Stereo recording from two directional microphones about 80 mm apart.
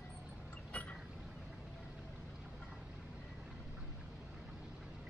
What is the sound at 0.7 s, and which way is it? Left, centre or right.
Vehicle, centre.